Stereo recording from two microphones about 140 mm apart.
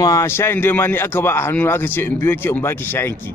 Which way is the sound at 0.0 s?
20° left (ahead or behind).